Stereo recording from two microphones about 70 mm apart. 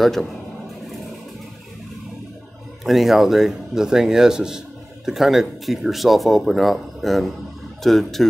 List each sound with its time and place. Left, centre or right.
0.0 s speech: centre
2.8 s speech: centre